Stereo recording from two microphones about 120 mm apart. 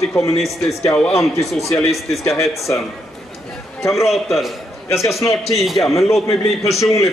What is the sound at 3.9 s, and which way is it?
Speech, centre (ahead or behind).